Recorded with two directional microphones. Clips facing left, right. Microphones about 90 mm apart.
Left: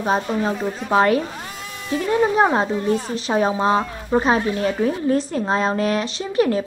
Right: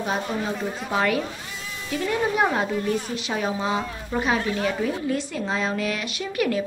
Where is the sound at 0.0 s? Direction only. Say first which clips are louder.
Left 6 dB; 35° left (ahead or behind).